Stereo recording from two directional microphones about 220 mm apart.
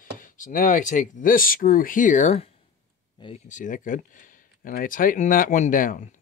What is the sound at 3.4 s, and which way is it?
Speech, 35° left (ahead or behind).